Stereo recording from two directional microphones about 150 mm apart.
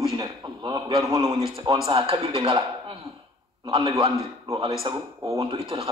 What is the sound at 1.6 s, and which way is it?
Speech, 40° right (ahead or behind).